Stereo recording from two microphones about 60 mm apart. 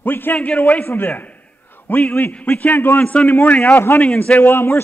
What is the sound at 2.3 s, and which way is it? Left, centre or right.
Speech, left.